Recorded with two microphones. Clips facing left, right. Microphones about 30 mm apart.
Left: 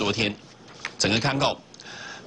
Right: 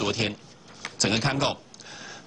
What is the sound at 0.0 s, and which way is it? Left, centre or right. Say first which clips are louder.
Speech: left 2 dB; centre.